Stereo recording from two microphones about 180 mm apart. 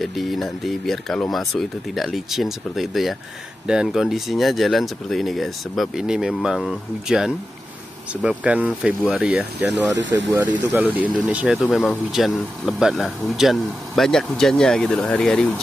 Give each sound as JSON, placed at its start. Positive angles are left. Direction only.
{"t": 0.0, "sound": "speech", "side_deg": 0}
{"t": 9.9, "sound": "speech", "side_deg": -80}
{"t": 10.7, "sound": "speech", "side_deg": -10}